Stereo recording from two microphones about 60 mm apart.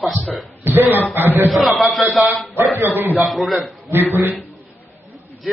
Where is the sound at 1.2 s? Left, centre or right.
Right.